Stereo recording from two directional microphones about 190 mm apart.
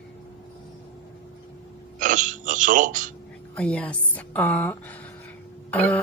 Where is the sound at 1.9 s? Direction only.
45° right (ahead or behind).